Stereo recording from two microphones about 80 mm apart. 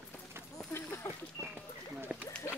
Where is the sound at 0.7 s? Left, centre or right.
Left.